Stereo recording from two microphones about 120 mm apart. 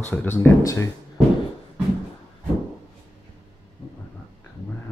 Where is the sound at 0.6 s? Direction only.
25° left (ahead or behind).